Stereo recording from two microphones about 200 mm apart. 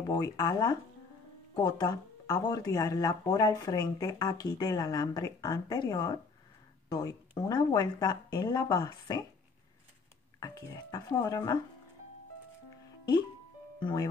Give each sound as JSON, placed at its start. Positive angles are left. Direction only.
{"t": 0.0, "sound": "speech", "side_deg": 20}
{"t": 10.4, "sound": "speech", "side_deg": 20}
{"t": 13.7, "sound": "speech", "side_deg": 20}